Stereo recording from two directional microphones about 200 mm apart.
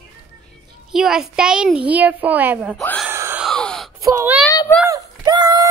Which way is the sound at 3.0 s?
10° right (ahead or behind).